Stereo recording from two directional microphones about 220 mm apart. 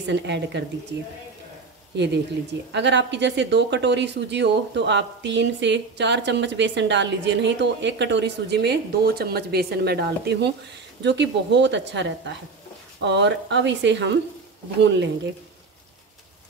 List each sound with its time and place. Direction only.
0.0 s speech: 55° right (ahead or behind)
2.7 s speech: 50° right (ahead or behind)